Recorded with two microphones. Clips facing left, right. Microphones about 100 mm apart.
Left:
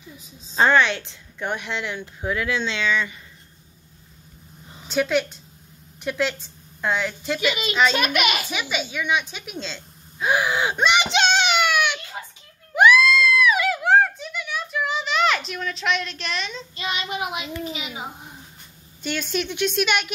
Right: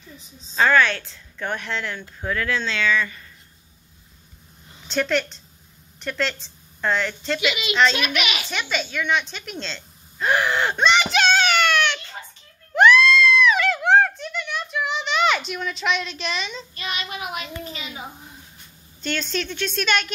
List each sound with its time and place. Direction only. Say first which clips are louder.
0.6 s a woman's voice: even; 20° left (ahead or behind)
4.8 s a woman's voice: left 1 dB; 10° left (ahead or behind)
7.3 s a woman's voice: right 1 dB; 40° left (ahead or behind)
8.5 s a woman's voice: right 1 dB; 10° left (ahead or behind)
11.1 s a sound: right 1 dB; 25° left (ahead or behind); by 16.6 s centre (ahead or behind)
16.7 s child singing: left 5 dB; 25° left (ahead or behind)
19.0 s a woman's voice: left 1 dB; 10° left (ahead or behind)